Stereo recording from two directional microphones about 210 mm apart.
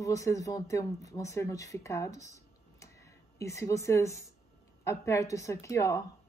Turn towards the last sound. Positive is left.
turn(degrees=15)  # may be behind; listen again after turning